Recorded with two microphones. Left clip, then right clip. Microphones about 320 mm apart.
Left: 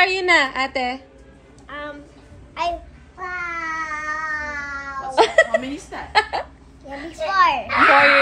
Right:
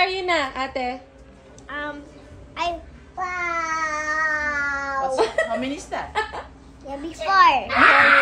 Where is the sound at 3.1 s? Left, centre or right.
Centre.